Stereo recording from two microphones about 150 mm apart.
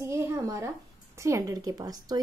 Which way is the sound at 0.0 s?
20° right (ahead or behind).